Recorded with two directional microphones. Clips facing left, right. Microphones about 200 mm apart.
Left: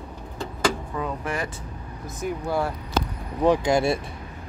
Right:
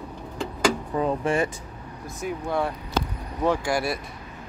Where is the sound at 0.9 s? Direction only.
30° right (ahead or behind).